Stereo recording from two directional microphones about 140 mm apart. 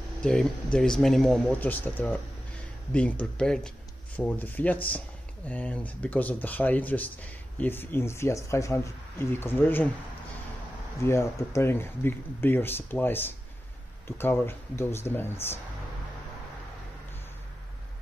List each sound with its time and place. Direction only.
0.2 s speech: 5° left (ahead or behind)
11.1 s speech: 20° left (ahead or behind)